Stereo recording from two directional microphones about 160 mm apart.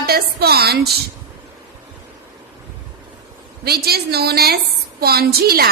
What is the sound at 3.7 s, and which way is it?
A woman's voice, 75° right (ahead or behind).